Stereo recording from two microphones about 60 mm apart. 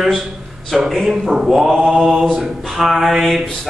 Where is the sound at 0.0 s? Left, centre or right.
Centre.